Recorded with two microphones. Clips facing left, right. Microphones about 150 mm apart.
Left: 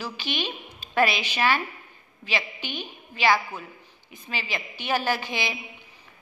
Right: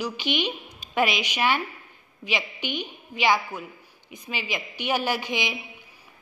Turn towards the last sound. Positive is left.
turn(degrees=-15)  # may be behind; listen again after turning